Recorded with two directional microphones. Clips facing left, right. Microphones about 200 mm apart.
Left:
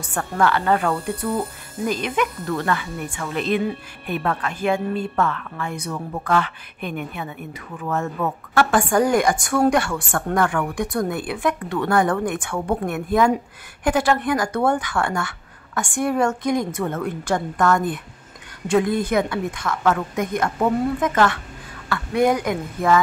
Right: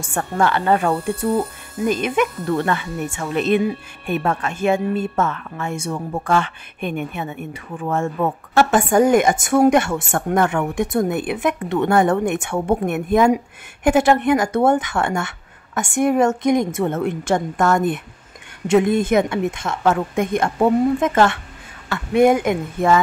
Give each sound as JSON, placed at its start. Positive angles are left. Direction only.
{"t": 0.0, "sound": "speech", "side_deg": -25}